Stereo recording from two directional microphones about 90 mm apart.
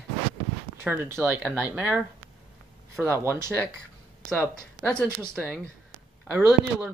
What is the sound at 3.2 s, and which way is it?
Speech, 30° right (ahead or behind).